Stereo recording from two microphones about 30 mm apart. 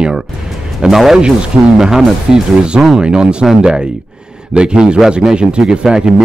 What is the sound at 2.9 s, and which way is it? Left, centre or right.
Speech, right.